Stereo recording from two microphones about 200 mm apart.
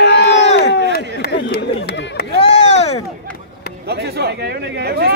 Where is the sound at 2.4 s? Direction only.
35° left (ahead or behind).